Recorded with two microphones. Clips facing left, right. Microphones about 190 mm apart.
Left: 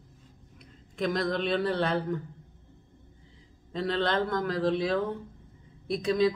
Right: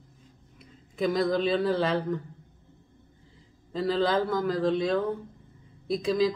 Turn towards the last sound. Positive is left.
turn(degrees=0)  # may be behind; listen again after turning